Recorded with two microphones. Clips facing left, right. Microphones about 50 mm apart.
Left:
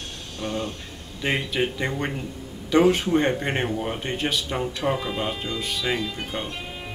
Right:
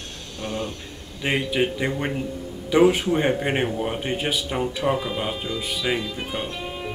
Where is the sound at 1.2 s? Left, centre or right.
Centre.